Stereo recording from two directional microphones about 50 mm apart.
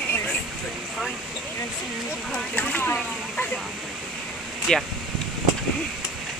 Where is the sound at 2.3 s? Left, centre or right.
Left.